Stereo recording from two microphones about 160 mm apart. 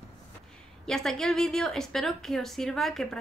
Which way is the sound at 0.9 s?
5° left (ahead or behind).